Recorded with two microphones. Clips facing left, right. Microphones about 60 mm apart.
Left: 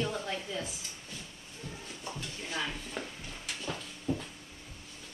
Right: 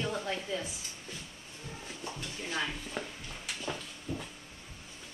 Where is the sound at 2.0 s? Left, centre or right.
Centre.